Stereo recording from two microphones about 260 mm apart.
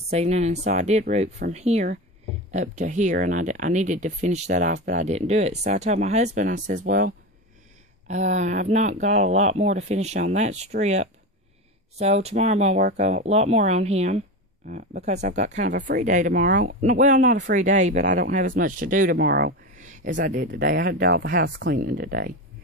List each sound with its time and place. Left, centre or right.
0.1 s speech: right